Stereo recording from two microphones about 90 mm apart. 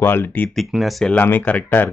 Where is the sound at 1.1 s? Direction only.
20° left (ahead or behind).